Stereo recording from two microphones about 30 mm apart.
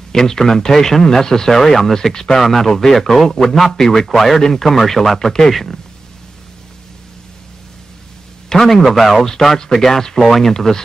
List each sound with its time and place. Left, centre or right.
0.1 s a man's voice: centre
8.5 s a man's voice: centre
8.8 s speech: centre
9.8 s a man's voice: centre
10.5 s a man's voice: centre